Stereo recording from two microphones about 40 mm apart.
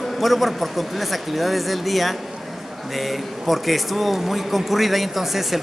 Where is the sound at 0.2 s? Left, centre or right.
Centre.